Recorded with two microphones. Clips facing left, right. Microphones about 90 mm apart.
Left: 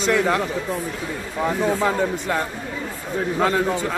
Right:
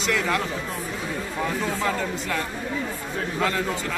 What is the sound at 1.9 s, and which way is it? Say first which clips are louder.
Speech: left 5 dB; 20° left (ahead or behind).